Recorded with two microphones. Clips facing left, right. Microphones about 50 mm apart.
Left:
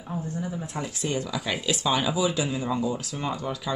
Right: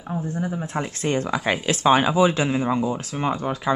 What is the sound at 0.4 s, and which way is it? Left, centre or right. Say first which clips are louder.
Speech: right 5 dB; right.